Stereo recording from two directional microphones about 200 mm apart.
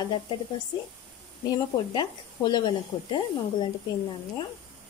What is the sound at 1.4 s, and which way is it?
Speech, 20° left (ahead or behind).